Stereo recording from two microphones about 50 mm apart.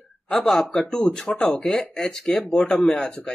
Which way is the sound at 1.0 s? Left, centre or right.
Centre.